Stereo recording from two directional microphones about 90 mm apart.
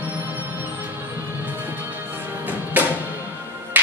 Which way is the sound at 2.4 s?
20° right (ahead or behind).